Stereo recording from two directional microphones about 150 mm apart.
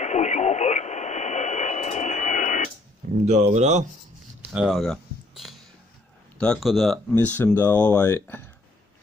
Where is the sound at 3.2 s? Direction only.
50° right (ahead or behind).